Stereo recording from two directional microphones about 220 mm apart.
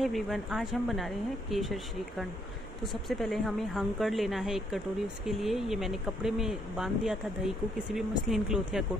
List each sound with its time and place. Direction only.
0.0 s speech: centre (ahead or behind)